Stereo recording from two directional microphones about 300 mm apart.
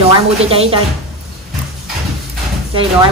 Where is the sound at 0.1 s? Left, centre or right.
Centre.